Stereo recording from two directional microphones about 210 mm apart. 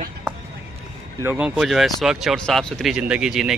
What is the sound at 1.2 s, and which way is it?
Speech, 5° right (ahead or behind).